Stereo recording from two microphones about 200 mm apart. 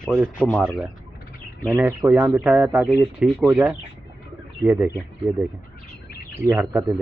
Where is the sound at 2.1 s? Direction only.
5° right (ahead or behind).